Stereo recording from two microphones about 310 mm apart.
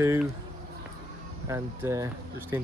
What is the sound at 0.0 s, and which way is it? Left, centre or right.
Speech, centre.